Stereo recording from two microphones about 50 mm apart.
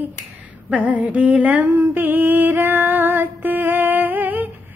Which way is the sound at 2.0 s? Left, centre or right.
Right.